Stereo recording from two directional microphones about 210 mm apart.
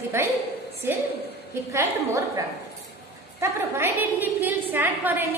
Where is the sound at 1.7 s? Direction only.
15° right (ahead or behind).